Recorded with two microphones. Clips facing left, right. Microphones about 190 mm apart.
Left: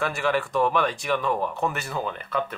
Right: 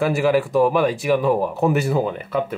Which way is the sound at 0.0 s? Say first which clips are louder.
Right 7 dB; 5° right (ahead or behind).